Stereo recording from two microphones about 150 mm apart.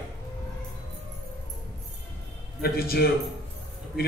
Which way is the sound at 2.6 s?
90° left.